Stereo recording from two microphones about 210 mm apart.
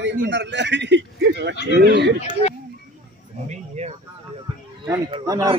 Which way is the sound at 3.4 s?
30° right (ahead or behind).